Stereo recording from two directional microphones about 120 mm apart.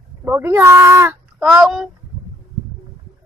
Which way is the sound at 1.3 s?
Centre (ahead or behind).